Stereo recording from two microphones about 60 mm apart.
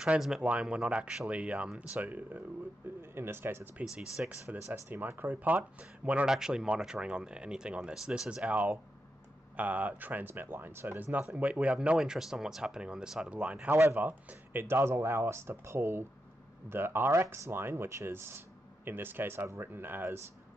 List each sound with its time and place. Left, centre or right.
0.4 s speech: centre
3.0 s speech: right
3.8 s speech: centre
4.5 s speech: right
6.2 s speech: centre
8.5 s speech: right
12.0 s speech: centre
13.9 s speech: right